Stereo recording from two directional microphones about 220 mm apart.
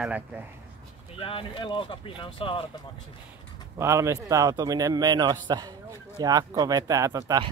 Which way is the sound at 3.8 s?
15° right (ahead or behind).